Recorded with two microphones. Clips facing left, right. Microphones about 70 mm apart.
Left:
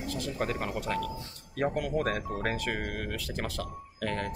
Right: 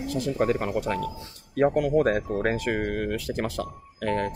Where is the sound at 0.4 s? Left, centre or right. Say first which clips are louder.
Right 8 dB; right.